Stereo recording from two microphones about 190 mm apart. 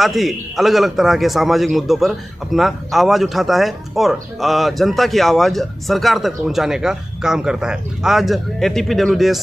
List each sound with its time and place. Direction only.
0.0 s a man's voice: centre (ahead or behind)